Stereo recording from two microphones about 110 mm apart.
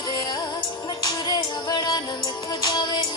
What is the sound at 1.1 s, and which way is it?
Music, 40° left (ahead or behind).